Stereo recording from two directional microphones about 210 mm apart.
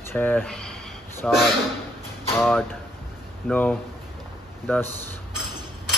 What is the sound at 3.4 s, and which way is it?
Speech, 5° left (ahead or behind).